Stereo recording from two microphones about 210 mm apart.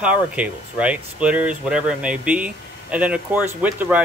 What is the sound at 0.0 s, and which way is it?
Speech, 5° right (ahead or behind).